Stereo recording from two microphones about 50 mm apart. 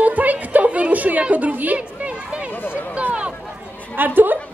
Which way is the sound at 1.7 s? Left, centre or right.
Right.